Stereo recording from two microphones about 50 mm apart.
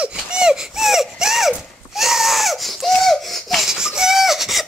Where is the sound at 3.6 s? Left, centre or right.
Centre.